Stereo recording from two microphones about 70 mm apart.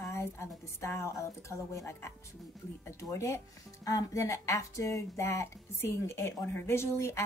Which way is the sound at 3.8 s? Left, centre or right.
Left.